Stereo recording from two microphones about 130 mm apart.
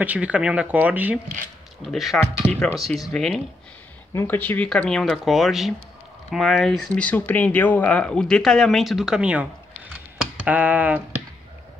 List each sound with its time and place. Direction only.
0.0 s speech: 10° right (ahead or behind)
1.9 s speech: centre (ahead or behind)
4.1 s speech: 25° left (ahead or behind)
4.4 s speech: 10° left (ahead or behind); by 11.0 s 10° right (ahead or behind)